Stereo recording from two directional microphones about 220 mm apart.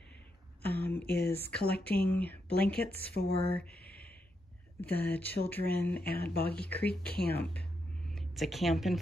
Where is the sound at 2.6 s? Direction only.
45° left (ahead or behind).